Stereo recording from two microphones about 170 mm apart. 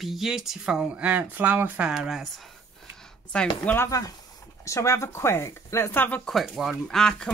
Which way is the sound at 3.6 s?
15° left (ahead or behind).